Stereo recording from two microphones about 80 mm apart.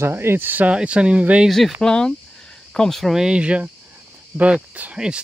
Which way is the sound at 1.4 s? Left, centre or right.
Centre.